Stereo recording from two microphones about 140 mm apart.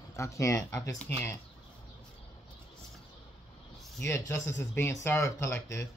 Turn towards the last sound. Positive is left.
turn(degrees=20)  # may be behind; listen again after turning